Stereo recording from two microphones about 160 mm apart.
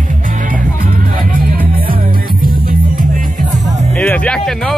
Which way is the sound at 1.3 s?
65° right (ahead or behind).